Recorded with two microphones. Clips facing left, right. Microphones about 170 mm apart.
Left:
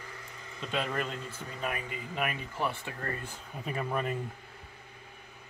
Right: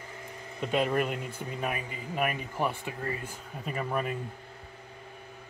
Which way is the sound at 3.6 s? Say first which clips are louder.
Right 1 dB; 5° right (ahead or behind).